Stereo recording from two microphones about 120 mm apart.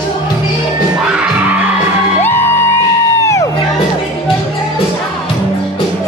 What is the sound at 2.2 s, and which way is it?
Music, 20° left (ahead or behind).